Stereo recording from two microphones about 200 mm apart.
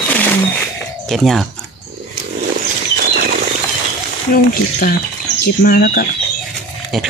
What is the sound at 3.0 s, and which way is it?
Bird flight, 50° right (ahead or behind).